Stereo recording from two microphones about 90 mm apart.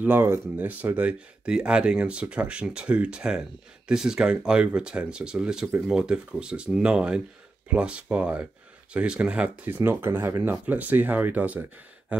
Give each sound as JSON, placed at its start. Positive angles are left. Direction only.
{"t": 0.0, "sound": "speech", "side_deg": -25}